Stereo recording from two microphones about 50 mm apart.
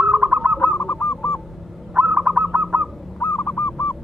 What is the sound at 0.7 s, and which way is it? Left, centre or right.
Goose, left.